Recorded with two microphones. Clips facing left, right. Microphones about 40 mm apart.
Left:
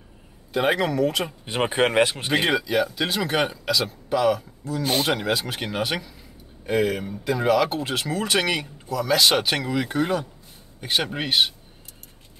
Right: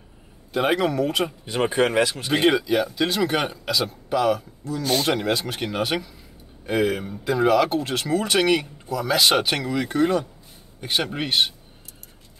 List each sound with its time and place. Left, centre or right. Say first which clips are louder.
0.5 s speech: right 1 dB; centre
1.4 s speech: left 1 dB; left
2.3 s speech: right 3 dB; centre